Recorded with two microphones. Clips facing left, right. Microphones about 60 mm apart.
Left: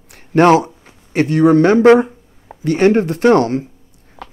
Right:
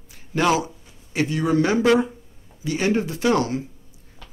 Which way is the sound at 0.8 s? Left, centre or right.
Left.